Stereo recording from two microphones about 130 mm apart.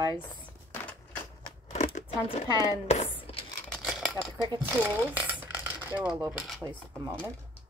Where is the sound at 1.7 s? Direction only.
65° left (ahead or behind).